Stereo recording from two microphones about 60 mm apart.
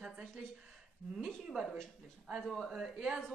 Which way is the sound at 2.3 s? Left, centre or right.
Centre.